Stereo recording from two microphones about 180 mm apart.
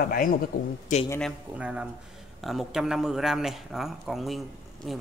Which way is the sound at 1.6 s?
5° right (ahead or behind).